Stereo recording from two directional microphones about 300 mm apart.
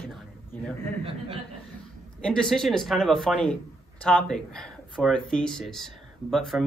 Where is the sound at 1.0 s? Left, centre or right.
Centre.